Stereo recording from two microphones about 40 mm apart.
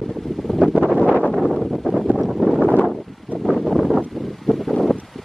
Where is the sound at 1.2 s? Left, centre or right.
Centre.